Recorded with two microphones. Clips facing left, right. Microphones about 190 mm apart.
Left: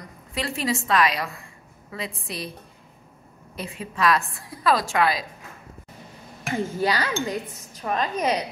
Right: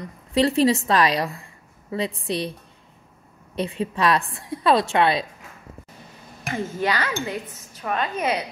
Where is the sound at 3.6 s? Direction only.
30° right (ahead or behind).